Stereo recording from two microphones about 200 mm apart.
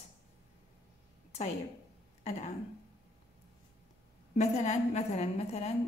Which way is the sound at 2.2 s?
35° left (ahead or behind).